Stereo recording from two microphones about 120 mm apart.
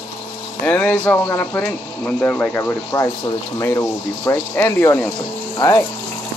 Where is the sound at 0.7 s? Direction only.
15° left (ahead or behind).